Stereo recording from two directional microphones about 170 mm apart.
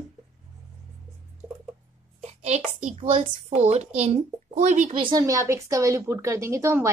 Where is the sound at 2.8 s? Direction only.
40° right (ahead or behind).